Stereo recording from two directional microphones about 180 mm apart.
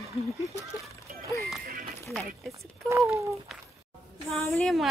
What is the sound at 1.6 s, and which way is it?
Speech, 55° right (ahead or behind).